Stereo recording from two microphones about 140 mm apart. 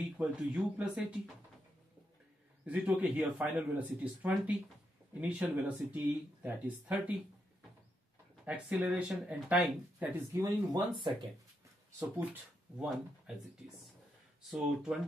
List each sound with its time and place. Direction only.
0.2 s a man's voice: 10° right (ahead or behind)
2.6 s a man's voice: 10° right (ahead or behind)
8.5 s a man's voice: 10° right (ahead or behind)
10.4 s speech: 35° right (ahead or behind)
12.0 s speech: 10° right (ahead or behind)
14.5 s speech: 5° right (ahead or behind)